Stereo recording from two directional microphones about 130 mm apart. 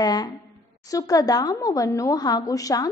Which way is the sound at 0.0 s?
30° left (ahead or behind).